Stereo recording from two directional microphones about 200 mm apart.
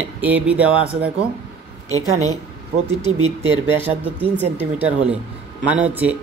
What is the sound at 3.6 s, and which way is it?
Speech, 10° right (ahead or behind).